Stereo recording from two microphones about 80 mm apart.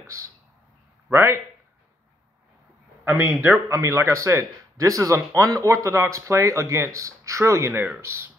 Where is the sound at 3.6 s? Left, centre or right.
Right.